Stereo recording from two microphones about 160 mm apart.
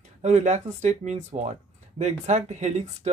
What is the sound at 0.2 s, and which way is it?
Speech, 45° right (ahead or behind).